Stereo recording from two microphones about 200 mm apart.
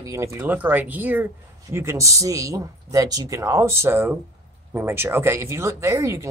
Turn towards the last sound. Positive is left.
turn(degrees=-15)  # may be behind; listen again after turning